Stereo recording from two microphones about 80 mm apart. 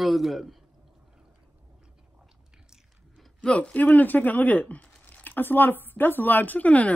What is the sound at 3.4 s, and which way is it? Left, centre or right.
Speech, centre.